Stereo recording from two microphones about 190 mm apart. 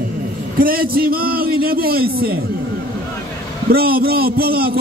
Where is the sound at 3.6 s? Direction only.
50° right (ahead or behind).